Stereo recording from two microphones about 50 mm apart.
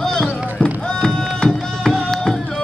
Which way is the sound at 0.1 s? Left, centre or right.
Centre.